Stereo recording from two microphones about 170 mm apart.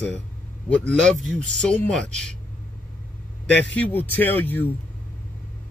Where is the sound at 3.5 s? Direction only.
10° left (ahead or behind).